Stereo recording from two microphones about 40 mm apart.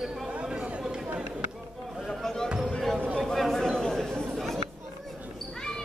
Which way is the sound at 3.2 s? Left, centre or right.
Centre.